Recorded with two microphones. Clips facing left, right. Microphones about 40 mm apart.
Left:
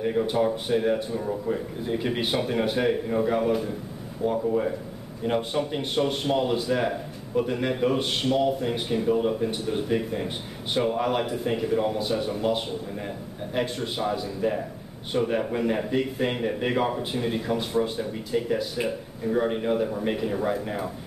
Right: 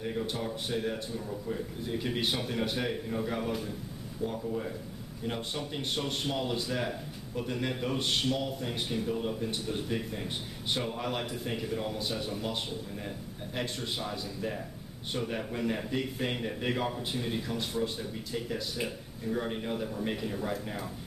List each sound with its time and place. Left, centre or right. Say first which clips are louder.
0.0 s a man's voice: left 10 dB; centre
5.2 s a man's voice: left 10 dB; left